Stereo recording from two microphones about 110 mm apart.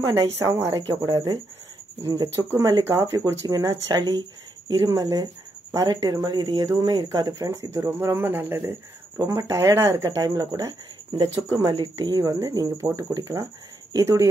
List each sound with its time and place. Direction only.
0.0 s speech: 25° right (ahead or behind)
2.0 s speech: 25° right (ahead or behind)
11.7 s speech: 40° right (ahead or behind)